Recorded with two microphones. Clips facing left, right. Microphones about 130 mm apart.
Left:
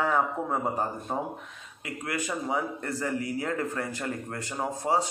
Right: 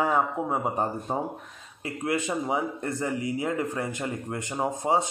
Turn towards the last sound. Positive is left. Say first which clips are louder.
# right 2 dB
turn(degrees=-20)  # may be behind; listen again after turning